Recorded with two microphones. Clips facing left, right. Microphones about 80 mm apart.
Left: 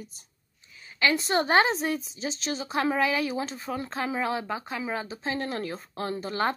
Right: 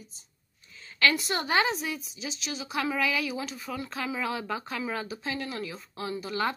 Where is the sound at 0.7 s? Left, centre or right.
Centre.